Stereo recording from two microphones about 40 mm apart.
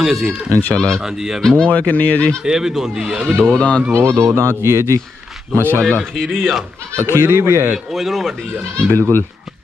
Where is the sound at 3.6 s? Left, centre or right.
Left.